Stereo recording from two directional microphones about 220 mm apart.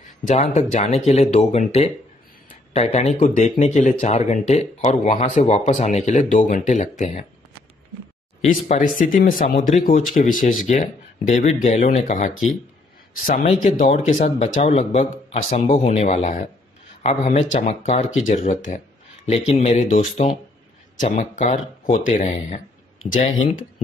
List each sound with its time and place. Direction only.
0.3 s speech: 30° left (ahead or behind)
8.5 s speech: 35° left (ahead or behind)
13.3 s speech: 35° left (ahead or behind)